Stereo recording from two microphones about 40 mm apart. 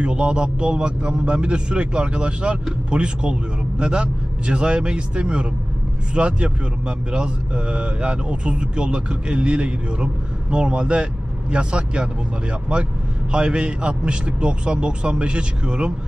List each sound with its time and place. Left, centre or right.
0.0 s speech: right